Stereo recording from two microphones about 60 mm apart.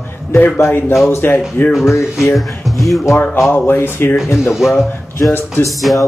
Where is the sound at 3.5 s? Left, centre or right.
Left.